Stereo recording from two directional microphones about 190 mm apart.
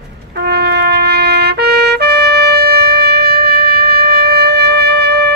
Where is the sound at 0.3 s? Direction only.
55° right (ahead or behind).